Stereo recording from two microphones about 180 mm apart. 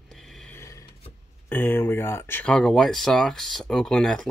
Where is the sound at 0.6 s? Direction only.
15° left (ahead or behind).